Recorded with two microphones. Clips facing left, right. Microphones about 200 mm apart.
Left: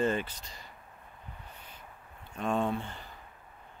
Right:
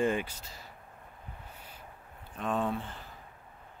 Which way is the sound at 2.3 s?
Centre (ahead or behind).